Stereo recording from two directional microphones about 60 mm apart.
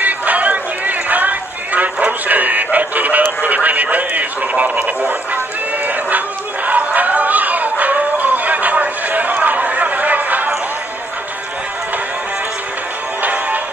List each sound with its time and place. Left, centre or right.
0.0 s run: right
5.9 s chatter: right
13.2 s music: right